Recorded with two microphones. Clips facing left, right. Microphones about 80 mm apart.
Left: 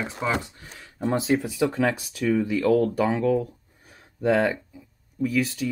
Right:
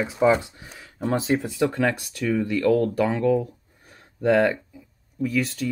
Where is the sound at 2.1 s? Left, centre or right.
Centre.